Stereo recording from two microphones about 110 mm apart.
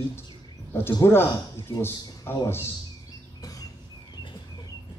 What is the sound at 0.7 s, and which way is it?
A man's voice, 20° left (ahead or behind).